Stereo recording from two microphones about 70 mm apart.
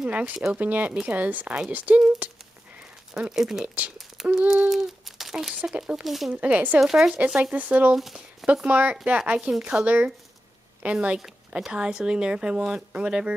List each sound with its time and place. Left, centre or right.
0.0 s speech: centre
3.2 s speech: centre
3.6 s speech: right
4.5 s speech: centre
6.0 s speech: centre
6.3 s speech: right
6.8 s speech: centre
7.2 s speech: centre
7.9 s speech: centre
8.6 s a woman's voice: right